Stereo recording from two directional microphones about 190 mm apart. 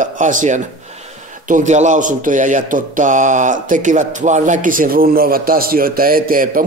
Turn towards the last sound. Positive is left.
turn(degrees=-50)  # may be behind; listen again after turning